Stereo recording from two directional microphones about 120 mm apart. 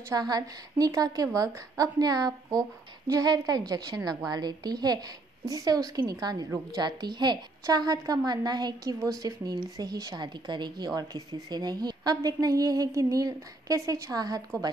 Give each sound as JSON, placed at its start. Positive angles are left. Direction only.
{"t": 0.1, "sound": "speech", "side_deg": -30}